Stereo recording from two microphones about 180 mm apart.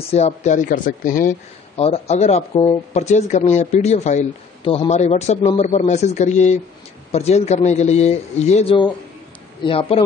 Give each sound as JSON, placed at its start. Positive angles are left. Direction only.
{"t": 0.1, "sound": "speech", "side_deg": 40}
{"t": 1.8, "sound": "speech", "side_deg": 35}